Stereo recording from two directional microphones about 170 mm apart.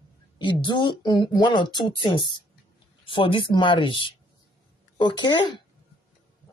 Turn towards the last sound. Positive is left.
turn(degrees=25)  # may be behind; listen again after turning